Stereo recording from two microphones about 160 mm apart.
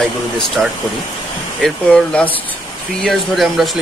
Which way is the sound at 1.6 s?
5° left (ahead or behind).